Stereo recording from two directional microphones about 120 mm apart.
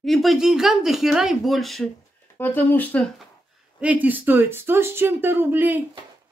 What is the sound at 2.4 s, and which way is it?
Speech, 15° left (ahead or behind).